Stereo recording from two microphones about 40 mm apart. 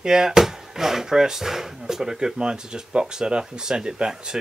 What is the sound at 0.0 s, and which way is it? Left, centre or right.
Speech, centre.